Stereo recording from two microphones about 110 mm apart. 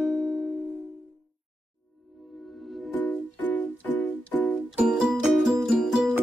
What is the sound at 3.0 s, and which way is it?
Music, 15° left (ahead or behind).